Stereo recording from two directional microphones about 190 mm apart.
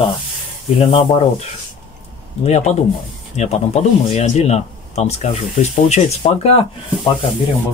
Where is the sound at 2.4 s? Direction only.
35° left (ahead or behind).